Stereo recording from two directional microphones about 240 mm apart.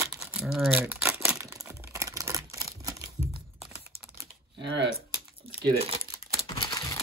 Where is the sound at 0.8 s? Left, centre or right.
Centre.